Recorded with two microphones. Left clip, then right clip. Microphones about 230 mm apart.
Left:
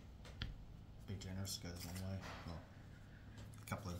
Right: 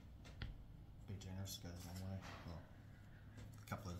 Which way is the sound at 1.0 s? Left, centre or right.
Centre.